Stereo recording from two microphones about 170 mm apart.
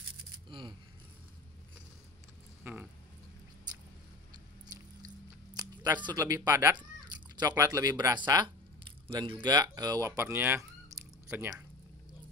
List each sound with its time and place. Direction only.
0.5 s keys jangling: 30° right (ahead or behind)
2.6 s a sound: 10° right (ahead or behind)
5.5 s music: 25° right (ahead or behind)
5.9 s speech: 25° right (ahead or behind)